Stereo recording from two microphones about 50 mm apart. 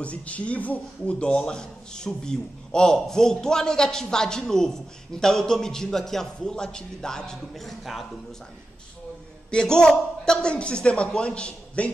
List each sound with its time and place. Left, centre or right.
0.0 s a man's voice: left
1.2 s a man's voice: centre
9.5 s a man's voice: centre